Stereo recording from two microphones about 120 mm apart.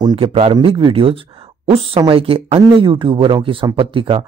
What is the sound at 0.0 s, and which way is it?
Speech, 45° right (ahead or behind).